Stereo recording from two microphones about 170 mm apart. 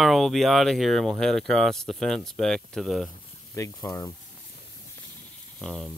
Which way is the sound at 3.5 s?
20° left (ahead or behind).